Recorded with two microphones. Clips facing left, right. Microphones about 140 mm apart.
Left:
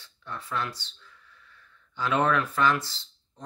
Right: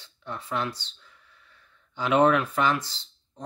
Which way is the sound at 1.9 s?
20° right (ahead or behind).